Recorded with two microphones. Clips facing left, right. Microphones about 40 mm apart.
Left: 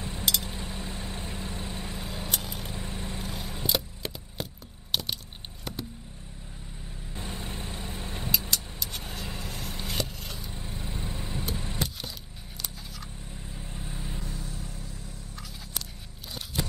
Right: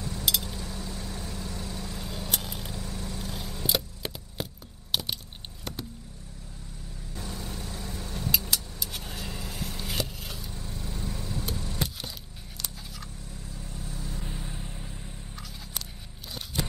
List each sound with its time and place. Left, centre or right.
0.2 s a sound: centre
0.5 s vehicle: left
2.3 s vehicle: centre
2.7 s vehicle: left
3.3 s a sound: centre
3.6 s a sound: centre
4.9 s squish: centre
7.2 s vehicle: left
8.5 s vehicle: centre
10.5 s vehicle: left
11.5 s keys jangling: left
12.6 s scissors: centre
13.3 s vehicle: left
14.2 s vehicle: right